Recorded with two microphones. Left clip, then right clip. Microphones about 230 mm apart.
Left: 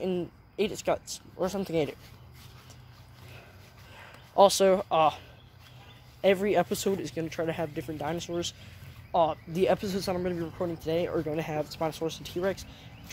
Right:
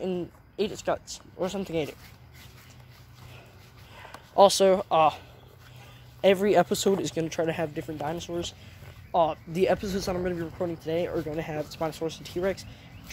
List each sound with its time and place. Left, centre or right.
0.0 s a woman's voice: centre
1.7 s speech: left
4.3 s speech: centre
6.2 s speech: centre
7.0 s speech: right
7.7 s speech: centre
8.3 s speech: centre
9.1 s speech: centre
10.8 s speech: centre
11.7 s speech: centre